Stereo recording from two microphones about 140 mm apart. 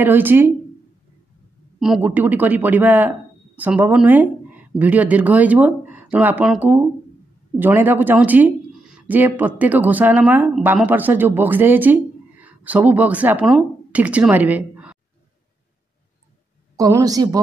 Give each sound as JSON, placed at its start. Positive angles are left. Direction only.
{"t": 0.0, "sound": "speech", "side_deg": -15}
{"t": 2.0, "sound": "a man's voice", "side_deg": -10}
{"t": 16.7, "sound": "speech", "side_deg": -25}